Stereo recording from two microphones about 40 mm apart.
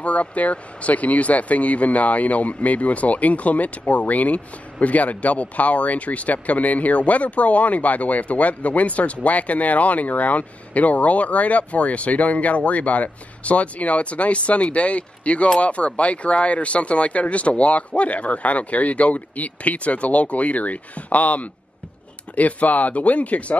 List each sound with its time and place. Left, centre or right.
0.0 s speech: left